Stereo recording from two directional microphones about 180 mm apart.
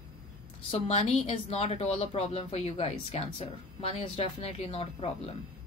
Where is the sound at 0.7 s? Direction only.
35° left (ahead or behind).